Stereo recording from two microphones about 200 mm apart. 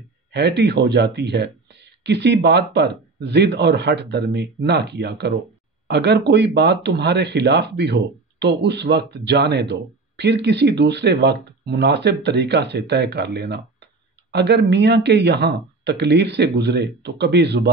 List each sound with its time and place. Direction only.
0.3 s speech: 55° right (ahead or behind)